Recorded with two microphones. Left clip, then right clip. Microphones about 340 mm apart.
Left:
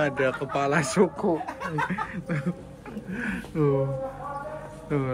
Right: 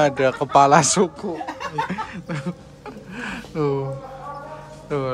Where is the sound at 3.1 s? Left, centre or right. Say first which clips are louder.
Right 2 dB; centre.